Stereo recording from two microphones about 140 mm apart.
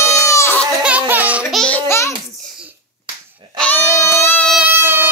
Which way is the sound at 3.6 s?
15° left (ahead or behind).